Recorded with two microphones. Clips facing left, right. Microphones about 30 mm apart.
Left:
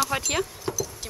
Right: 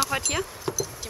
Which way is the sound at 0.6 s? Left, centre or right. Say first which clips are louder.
Even; centre.